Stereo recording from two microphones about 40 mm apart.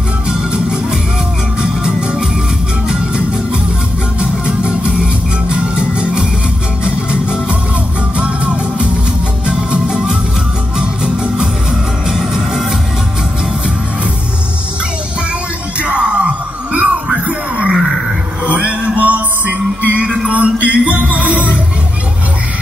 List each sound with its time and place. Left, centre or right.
0.3 s music: centre
4.2 s music: right
9.5 s music: right
15.8 s music: right